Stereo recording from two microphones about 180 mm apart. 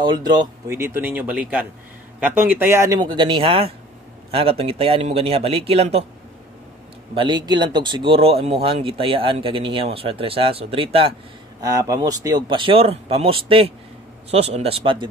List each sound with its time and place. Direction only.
0.0 s speech: 25° right (ahead or behind)
7.2 s speech: 25° right (ahead or behind)
11.6 s speech: 20° right (ahead or behind)